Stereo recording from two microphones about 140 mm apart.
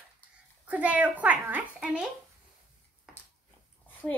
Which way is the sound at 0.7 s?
10° right (ahead or behind).